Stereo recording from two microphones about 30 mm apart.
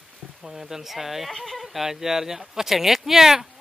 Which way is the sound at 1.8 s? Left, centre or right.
Centre.